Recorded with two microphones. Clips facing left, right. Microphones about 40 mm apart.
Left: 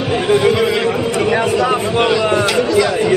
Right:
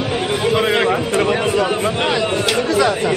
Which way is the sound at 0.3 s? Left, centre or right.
Left.